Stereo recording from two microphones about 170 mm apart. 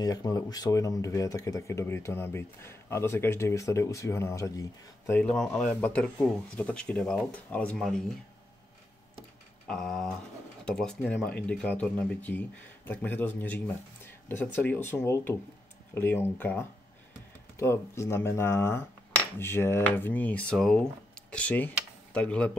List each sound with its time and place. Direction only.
0.0 s speech: 20° left (ahead or behind)
5.2 s speech: 5° left (ahead or behind)
9.7 s speech: centre (ahead or behind)